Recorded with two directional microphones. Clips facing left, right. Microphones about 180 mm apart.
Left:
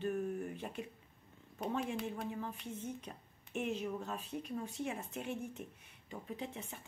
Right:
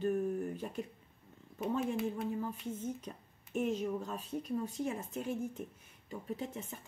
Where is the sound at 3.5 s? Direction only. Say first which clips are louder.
Right 4 dB; 40° right (ahead or behind).